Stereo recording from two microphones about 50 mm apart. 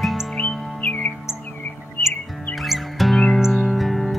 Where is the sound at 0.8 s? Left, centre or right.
Left.